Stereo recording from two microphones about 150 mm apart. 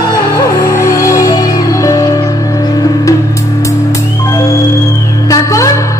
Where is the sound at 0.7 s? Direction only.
20° left (ahead or behind).